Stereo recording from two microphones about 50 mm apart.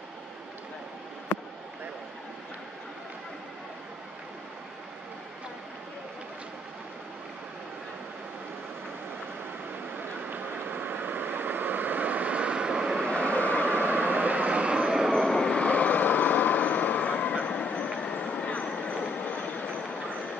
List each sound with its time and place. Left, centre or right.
1.3 s basketball bounce: left
10.3 s vehicle: right; by 13.0 s centre
13.1 s train: left
13.7 s vehicle: right; by 15.0 s centre
15.1 s vehicle: centre
15.5 s vehicle: left
18.0 s train: left